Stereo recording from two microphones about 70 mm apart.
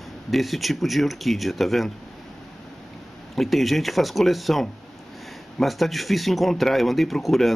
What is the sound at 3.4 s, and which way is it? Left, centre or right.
Speech, centre.